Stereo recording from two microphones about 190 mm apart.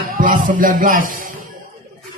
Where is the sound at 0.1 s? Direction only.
45° right (ahead or behind).